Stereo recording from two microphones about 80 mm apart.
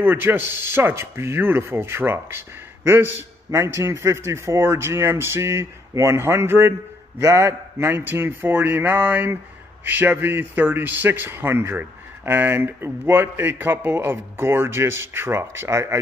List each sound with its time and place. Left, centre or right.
0.0 s speech: right
7.2 s speech: right